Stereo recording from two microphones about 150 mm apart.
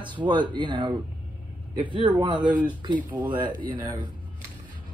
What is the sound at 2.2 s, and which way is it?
Speech, 35° right (ahead or behind).